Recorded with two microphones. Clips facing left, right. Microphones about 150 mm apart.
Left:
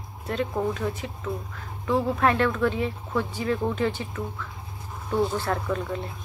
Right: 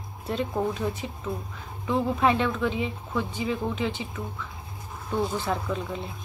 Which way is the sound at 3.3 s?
10° right (ahead or behind).